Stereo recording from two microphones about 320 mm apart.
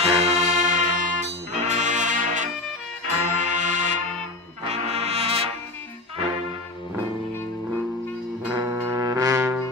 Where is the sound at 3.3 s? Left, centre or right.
Right.